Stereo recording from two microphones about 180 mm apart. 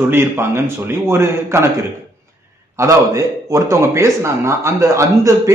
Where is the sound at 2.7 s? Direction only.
15° right (ahead or behind).